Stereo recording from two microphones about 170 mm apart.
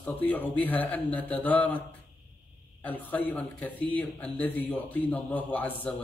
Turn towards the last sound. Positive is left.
turn(degrees=10)  # may be behind; listen again after turning